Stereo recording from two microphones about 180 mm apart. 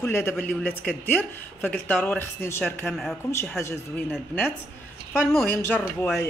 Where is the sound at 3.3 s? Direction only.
15° left (ahead or behind).